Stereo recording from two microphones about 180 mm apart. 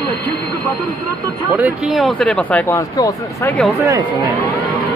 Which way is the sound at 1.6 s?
5° right (ahead or behind).